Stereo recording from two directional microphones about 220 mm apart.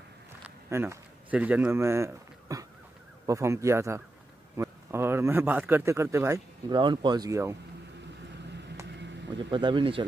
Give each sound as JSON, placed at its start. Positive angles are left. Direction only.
{"t": 0.7, "sound": "a man's voice", "side_deg": -10}
{"t": 8.4, "sound": "vehicle", "side_deg": -50}
{"t": 8.8, "sound": "a sound", "side_deg": -50}
{"t": 9.4, "sound": "speech", "side_deg": -20}